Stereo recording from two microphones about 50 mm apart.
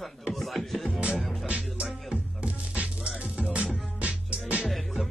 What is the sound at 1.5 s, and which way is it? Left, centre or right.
Music, right.